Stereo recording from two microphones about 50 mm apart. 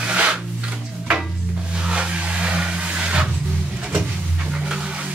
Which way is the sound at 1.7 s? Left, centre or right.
Centre.